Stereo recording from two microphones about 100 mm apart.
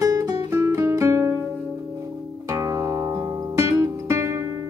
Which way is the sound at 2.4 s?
30° right (ahead or behind).